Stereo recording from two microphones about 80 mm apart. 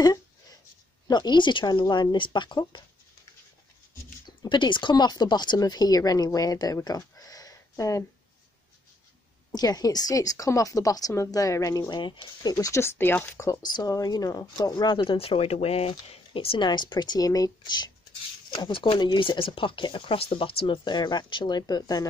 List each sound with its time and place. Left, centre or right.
1.0 s speech: left
4.4 s speech: left
9.5 s speech: left
11.9 s speech: left
12.5 s speech: left
12.8 s speech: left
13.6 s speech: left
16.5 s speech: left
18.5 s speech: left